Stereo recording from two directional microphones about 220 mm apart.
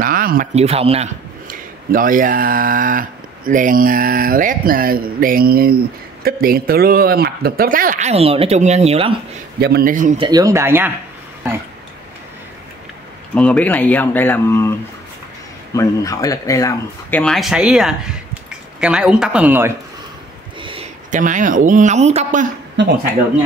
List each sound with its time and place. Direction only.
0.0 s a man's voice: 40° right (ahead or behind)
9.6 s speech: 45° right (ahead or behind)
10.1 s speech: 20° right (ahead or behind)
13.3 s speech: 5° left (ahead or behind)
15.7 s speech: 15° left (ahead or behind)
17.2 s speech: centre (ahead or behind)
21.1 s speech: 35° right (ahead or behind)
22.8 s speech: 55° right (ahead or behind)